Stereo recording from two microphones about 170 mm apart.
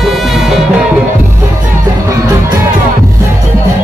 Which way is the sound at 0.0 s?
Centre (ahead or behind).